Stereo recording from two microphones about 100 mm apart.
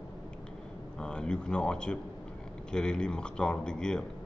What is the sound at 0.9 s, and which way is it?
A man's voice, 10° left (ahead or behind).